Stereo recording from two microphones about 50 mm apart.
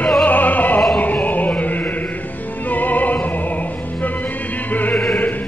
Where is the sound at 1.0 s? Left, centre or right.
Left.